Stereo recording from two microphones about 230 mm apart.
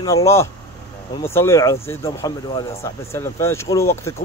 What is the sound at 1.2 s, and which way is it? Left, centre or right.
A man's voice, centre.